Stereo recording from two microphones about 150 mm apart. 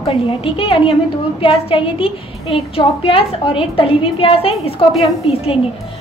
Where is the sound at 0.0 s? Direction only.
40° left (ahead or behind).